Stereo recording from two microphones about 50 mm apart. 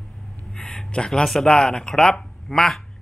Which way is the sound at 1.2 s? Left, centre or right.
Centre.